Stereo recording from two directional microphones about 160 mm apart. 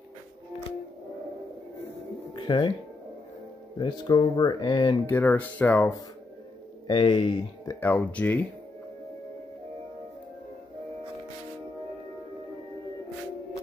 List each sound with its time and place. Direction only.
2.3 s speech: 30° left (ahead or behind)
3.7 s speech: 25° left (ahead or behind)
5.0 s speech: 15° left (ahead or behind)
6.9 s speech: 30° left (ahead or behind)
7.8 s speech: 10° left (ahead or behind)